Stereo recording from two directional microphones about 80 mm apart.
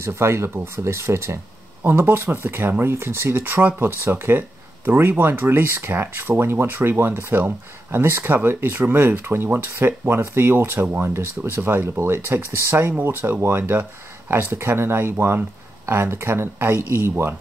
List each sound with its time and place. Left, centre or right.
0.0 s speech: right
1.8 s speech: right